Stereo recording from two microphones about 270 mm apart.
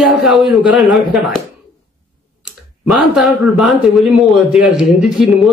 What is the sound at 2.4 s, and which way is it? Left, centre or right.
Speech, centre.